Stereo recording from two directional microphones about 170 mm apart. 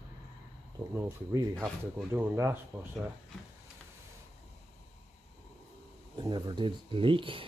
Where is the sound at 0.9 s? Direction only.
15° right (ahead or behind).